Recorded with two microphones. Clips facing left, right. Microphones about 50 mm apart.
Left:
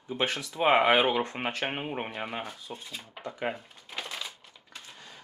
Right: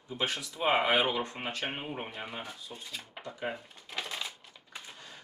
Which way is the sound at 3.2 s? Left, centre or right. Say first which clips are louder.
Left 5 dB; centre.